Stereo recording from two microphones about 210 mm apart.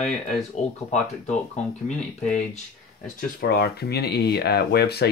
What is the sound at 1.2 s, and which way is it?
Speech, 35° left (ahead or behind).